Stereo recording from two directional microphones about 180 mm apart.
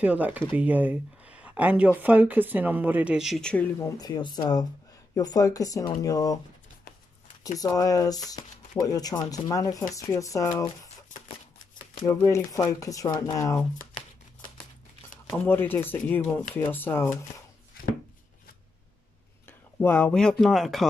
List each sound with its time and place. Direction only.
0.0 s speech: 10° right (ahead or behind); by 3.9 s 10° left (ahead or behind)
4.0 s speech: 20° left (ahead or behind)
7.5 s speech: 20° left (ahead or behind)
12.0 s speech: 20° left (ahead or behind)
15.4 s speech: 10° left (ahead or behind)
19.4 s speech: 10° left (ahead or behind)